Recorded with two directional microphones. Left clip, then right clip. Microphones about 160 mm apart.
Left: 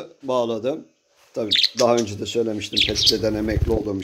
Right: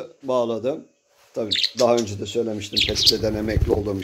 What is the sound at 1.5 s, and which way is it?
Speech, 35° left (ahead or behind).